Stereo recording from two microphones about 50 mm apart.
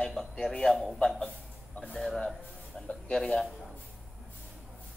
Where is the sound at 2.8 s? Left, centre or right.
Centre.